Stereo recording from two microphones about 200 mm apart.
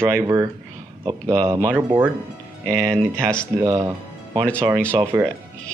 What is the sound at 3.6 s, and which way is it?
Speech, 15° right (ahead or behind).